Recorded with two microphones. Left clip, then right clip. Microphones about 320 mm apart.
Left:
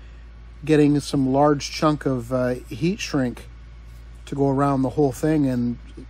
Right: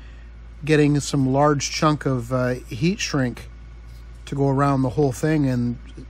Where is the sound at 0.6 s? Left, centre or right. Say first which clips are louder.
Left 1 dB; right.